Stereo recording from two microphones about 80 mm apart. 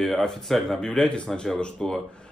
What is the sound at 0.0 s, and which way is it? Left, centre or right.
A man's voice, centre.